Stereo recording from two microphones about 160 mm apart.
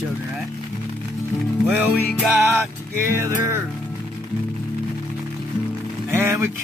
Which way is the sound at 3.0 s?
15° right (ahead or behind).